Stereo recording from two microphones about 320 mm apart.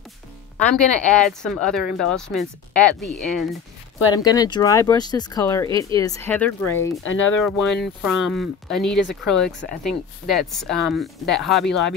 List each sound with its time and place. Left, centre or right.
0.6 s speech: centre
4.1 s speech: centre
7.0 s speech: left
7.4 s speech: centre